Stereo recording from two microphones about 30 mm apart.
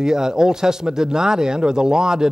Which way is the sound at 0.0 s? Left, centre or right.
Right.